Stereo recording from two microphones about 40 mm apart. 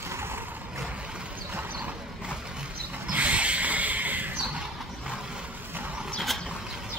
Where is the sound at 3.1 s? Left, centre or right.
Right.